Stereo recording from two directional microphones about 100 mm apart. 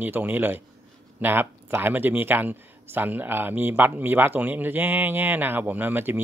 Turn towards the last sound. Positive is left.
turn(degrees=-20)  # may be behind; listen again after turning